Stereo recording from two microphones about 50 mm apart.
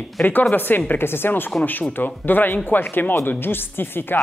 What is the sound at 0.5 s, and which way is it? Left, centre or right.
Speech, left.